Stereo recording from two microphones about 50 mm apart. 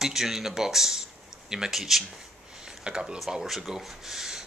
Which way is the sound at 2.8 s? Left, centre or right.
Centre.